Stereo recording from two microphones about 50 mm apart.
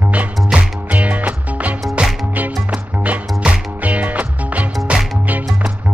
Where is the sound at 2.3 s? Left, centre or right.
Right.